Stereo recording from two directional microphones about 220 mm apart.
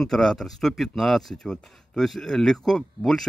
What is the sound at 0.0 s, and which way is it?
Speech, centre (ahead or behind).